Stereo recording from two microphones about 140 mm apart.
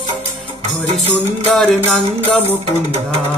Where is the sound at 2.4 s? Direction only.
50° right (ahead or behind).